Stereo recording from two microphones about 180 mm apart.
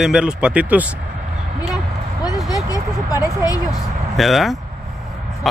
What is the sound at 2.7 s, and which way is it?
Speech, 20° left (ahead or behind).